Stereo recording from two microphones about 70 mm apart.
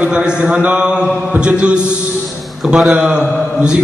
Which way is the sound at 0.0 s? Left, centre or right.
Centre.